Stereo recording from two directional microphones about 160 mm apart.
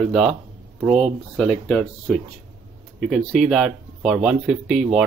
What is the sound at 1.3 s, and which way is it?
Speech, 5° left (ahead or behind).